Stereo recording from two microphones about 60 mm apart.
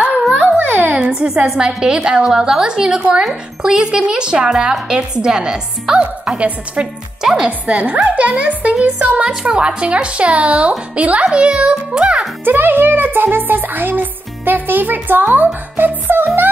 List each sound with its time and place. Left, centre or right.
0.6 s a sound: right
0.9 s speech: centre
7.2 s speech: centre
7.9 s speech: right
12.4 s speech: right